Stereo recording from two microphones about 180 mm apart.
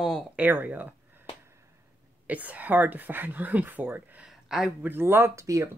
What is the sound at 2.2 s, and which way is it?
Speech, 10° right (ahead or behind).